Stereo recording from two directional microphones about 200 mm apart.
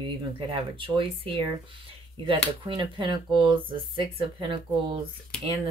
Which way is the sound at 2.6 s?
25° right (ahead or behind).